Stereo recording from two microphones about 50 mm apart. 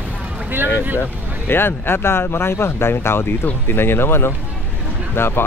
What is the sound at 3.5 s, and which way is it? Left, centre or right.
Speech, left.